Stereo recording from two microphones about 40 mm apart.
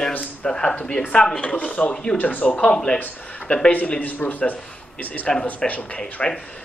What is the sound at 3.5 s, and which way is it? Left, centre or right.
Speech, left.